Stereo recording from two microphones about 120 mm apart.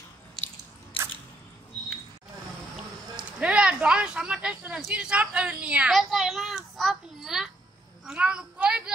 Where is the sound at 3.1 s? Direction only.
10° right (ahead or behind).